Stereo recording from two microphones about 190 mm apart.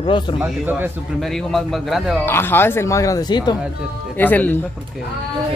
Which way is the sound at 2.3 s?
10° left (ahead or behind).